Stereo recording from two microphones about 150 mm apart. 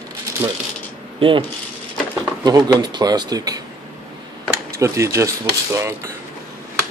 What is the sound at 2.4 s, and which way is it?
Speech, 25° right (ahead or behind).